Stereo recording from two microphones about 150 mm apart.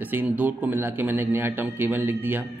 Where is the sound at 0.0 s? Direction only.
10° right (ahead or behind).